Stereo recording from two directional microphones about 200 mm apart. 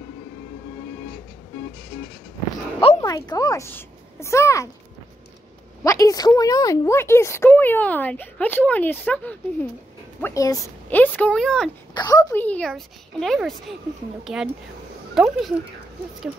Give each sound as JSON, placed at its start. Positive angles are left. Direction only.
{"t": 3.0, "sound": "a woman's voice", "side_deg": 15}
{"t": 5.9, "sound": "a woman's voice", "side_deg": 15}
{"t": 11.9, "sound": "a woman's voice", "side_deg": 20}